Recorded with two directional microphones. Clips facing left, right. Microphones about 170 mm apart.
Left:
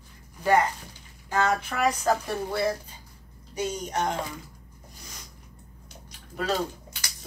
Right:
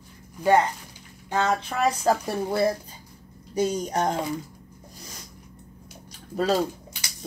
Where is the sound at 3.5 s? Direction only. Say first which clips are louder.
Right 5 dB; 35° right (ahead or behind).